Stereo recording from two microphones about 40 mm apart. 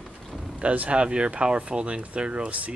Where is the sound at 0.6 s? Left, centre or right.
Right.